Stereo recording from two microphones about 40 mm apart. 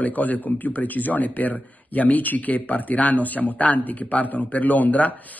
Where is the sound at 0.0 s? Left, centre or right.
Left.